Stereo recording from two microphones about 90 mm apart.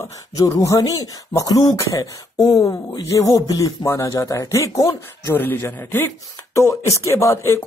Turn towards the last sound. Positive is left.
turn(degrees=35)  # may be behind; listen again after turning